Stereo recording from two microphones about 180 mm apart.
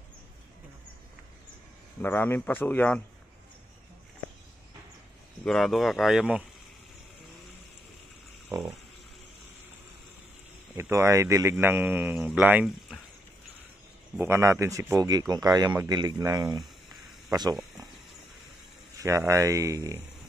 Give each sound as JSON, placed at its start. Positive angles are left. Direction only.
{"t": 2.0, "sound": "speech", "side_deg": 10}
{"t": 5.4, "sound": "speech", "side_deg": 0}
{"t": 10.8, "sound": "speech", "side_deg": -15}
{"t": 14.1, "sound": "a man's voice", "side_deg": -15}
{"t": 18.9, "sound": "speech", "side_deg": -15}